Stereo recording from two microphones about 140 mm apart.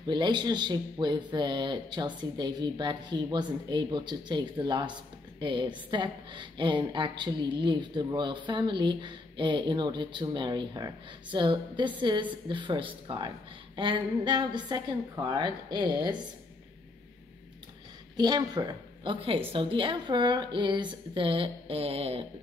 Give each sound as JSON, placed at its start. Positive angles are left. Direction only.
{"t": 0.0, "sound": "speech", "side_deg": -35}
{"t": 18.1, "sound": "speech", "side_deg": -30}